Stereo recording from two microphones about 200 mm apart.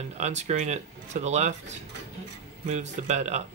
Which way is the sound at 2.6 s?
35° right (ahead or behind).